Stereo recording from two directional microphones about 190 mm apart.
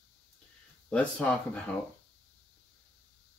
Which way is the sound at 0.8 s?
5° left (ahead or behind).